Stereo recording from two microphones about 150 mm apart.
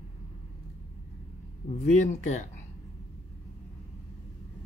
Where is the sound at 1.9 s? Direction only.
50° left (ahead or behind).